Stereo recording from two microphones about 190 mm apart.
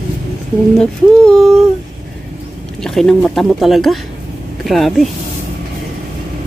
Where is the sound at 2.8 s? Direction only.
Centre (ahead or behind).